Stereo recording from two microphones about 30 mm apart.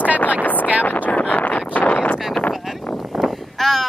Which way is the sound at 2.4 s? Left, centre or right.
Left.